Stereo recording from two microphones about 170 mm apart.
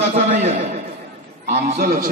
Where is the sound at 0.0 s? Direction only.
40° right (ahead or behind).